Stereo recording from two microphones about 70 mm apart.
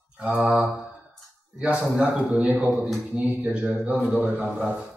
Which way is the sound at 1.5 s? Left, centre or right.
Centre.